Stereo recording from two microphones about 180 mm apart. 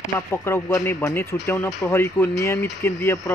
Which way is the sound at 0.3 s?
15° left (ahead or behind).